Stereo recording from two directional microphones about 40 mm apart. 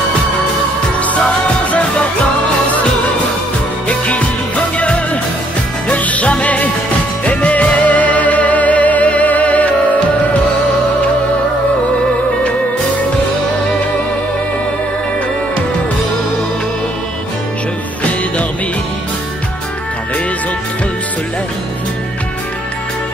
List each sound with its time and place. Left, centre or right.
1.0 s music: left
4.1 s music: left